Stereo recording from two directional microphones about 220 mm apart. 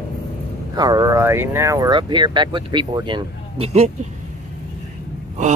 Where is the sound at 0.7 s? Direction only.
15° right (ahead or behind).